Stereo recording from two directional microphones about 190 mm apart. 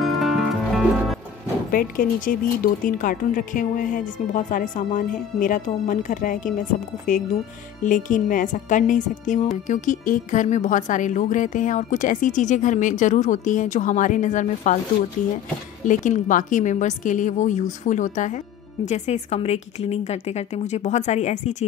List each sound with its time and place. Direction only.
0.0 s music: centre (ahead or behind)
1.7 s a woman's voice: 50° left (ahead or behind)
7.8 s a woman's voice: 45° left (ahead or behind)